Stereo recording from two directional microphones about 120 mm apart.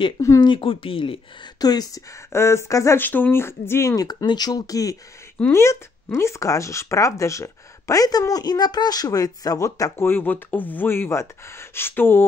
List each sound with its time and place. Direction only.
0.4 s speech: 45° left (ahead or behind)
1.6 s speech: 30° left (ahead or behind)
2.3 s speech: 20° left (ahead or behind)